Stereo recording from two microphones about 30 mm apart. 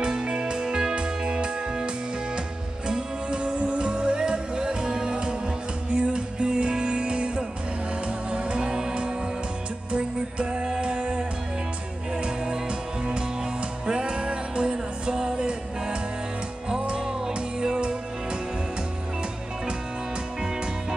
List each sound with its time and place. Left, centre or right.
0.0 s music: right
2.9 s music: right
9.9 s music: right
13.8 s music: right
15.1 s music: centre
16.8 s music: right